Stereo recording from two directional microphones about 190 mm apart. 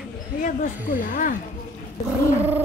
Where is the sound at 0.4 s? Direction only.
45° left (ahead or behind).